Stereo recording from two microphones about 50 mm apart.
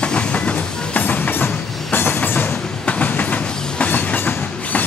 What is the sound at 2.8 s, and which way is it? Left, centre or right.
Train, left.